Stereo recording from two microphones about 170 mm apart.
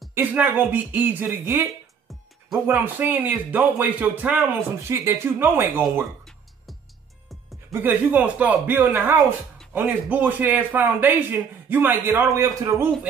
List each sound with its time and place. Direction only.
0.1 s speech: 10° right (ahead or behind)
2.6 s speech: 10° right (ahead or behind)
6.2 s music: centre (ahead or behind)
7.7 s speech: 10° right (ahead or behind)